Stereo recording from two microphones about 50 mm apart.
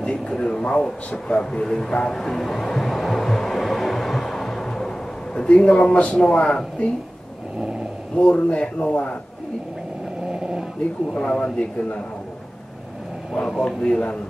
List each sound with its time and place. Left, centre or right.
0.0 s a man's voice: centre
2.1 s music: centre
6.3 s speech: left
8.2 s speech: left
10.2 s a sound: centre
11.1 s speech: left
13.7 s a man's voice: centre